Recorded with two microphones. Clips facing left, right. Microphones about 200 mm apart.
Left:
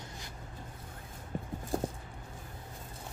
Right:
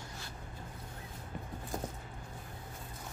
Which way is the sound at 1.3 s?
40° left (ahead or behind).